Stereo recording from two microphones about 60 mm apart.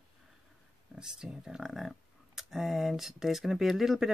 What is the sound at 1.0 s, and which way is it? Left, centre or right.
Speech, centre.